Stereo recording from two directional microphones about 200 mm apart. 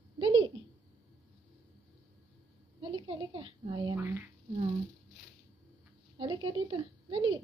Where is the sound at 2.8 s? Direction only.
25° right (ahead or behind).